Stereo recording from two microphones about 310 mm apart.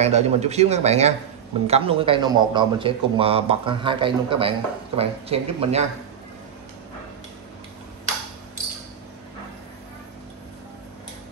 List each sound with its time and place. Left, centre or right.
0.0 s a man's voice: right